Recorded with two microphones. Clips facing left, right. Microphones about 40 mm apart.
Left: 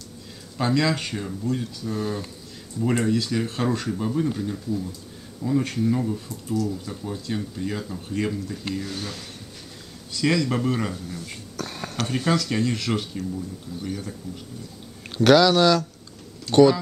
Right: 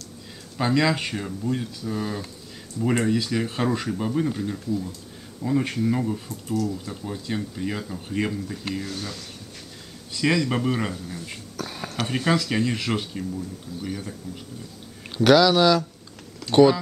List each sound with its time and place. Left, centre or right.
0.6 s speech: centre
1.9 s speech: centre
8.9 s speech: centre
10.1 s speech: centre
11.6 s a sound: centre
12.1 s speech: centre
15.1 s speech: centre